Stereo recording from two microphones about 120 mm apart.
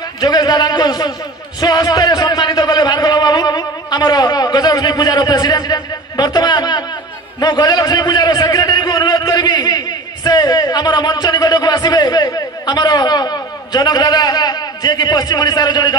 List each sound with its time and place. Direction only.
0.2 s a man's voice: 30° left (ahead or behind)